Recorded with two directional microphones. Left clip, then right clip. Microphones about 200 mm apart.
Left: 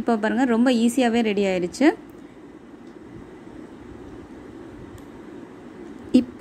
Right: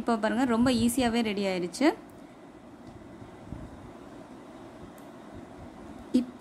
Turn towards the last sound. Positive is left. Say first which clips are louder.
# left 8 dB
turn(degrees=20)  # may be behind; listen again after turning